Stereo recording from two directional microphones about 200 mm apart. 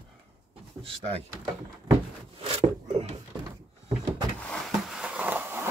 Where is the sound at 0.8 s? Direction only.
30° right (ahead or behind).